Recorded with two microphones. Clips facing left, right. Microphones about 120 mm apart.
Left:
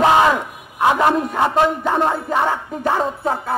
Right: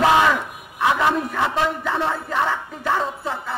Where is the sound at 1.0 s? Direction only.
40° left (ahead or behind).